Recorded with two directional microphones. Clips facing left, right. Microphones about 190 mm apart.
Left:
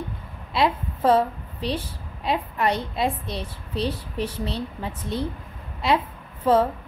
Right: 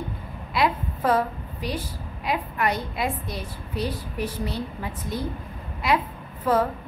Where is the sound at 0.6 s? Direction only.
25° left (ahead or behind).